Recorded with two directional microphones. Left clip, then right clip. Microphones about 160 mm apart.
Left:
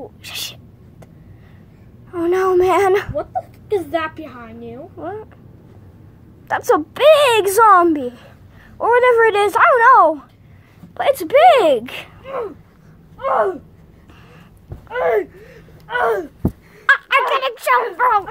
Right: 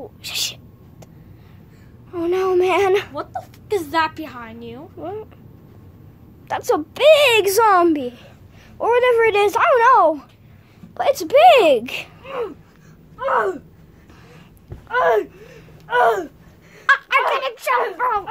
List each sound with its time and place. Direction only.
0.0 s speech: centre (ahead or behind)
2.2 s a sound: 15° left (ahead or behind)
3.2 s a woman's voice: 20° right (ahead or behind)
4.9 s speech: centre (ahead or behind)
6.4 s speech: 10° left (ahead or behind); by 12.1 s 5° right (ahead or behind)
14.9 s a woman's voice: 20° right (ahead or behind)
15.9 s a sound: 5° right (ahead or behind)
16.8 s dog: 25° left (ahead or behind)
17.3 s speech: 40° left (ahead or behind)